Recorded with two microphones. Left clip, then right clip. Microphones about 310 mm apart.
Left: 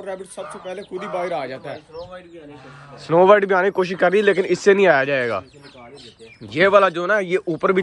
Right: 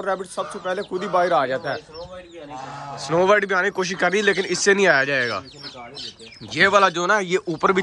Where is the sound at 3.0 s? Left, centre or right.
Centre.